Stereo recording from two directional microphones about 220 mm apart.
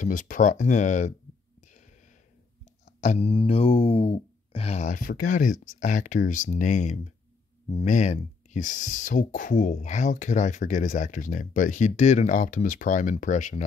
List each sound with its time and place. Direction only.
0.0 s speech: 35° left (ahead or behind)
3.0 s speech: 30° left (ahead or behind)